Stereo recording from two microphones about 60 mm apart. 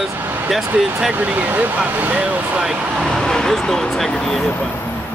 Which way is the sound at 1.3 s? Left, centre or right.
Right.